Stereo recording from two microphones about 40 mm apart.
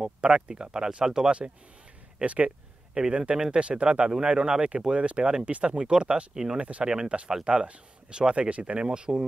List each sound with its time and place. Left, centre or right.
0.0 s speech: right
2.2 s speech: right
2.9 s speech: right
6.6 s speech: right
6.9 s speech: centre
7.5 s speech: right
8.4 s speech: right